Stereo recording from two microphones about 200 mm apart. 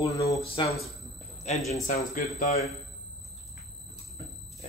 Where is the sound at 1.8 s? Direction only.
50° left (ahead or behind).